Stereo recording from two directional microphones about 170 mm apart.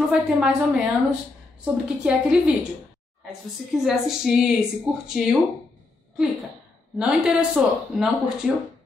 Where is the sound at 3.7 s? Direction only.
Centre (ahead or behind).